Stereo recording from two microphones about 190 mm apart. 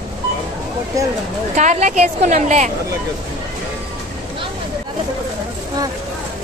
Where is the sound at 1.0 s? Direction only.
15° right (ahead or behind).